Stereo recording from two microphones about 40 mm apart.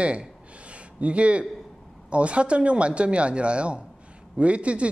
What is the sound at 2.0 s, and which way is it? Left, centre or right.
A man's voice, right.